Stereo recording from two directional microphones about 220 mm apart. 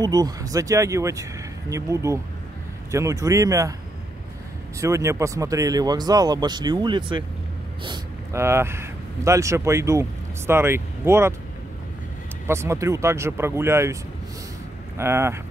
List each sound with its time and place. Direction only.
0.0 s speech: 15° right (ahead or behind)
4.7 s speech: 15° right (ahead or behind)
12.4 s speech: 10° right (ahead or behind)
15.0 s speech: 10° right (ahead or behind)